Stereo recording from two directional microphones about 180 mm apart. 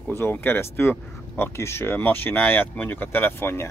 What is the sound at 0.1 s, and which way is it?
Speech, 10° left (ahead or behind).